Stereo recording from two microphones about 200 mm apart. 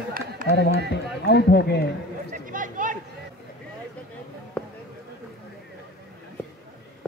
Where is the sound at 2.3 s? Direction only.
40° right (ahead or behind).